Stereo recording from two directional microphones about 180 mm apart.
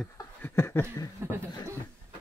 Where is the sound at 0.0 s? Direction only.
10° left (ahead or behind).